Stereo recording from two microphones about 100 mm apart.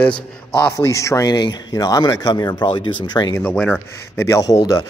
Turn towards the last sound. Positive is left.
turn(degrees=35)  # may be behind; listen again after turning